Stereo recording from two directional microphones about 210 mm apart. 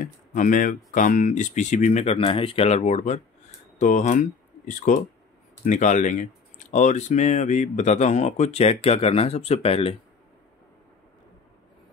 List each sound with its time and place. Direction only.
0.0 s speech: 35° left (ahead or behind)